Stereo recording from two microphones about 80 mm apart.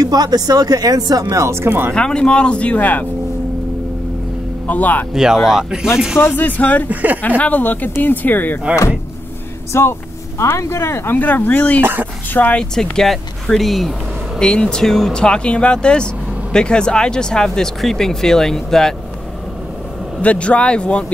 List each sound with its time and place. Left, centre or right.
0.0 s speech: right
1.3 s speech: right
2.0 s speech: centre
4.6 s speech: left
5.1 s speech: centre
6.1 s speech: left
6.9 s speech: centre
7.2 s speech: left
9.7 s speech: left
11.8 s speech: right
12.4 s speech: left
12.7 s speech: centre
20.2 s speech: centre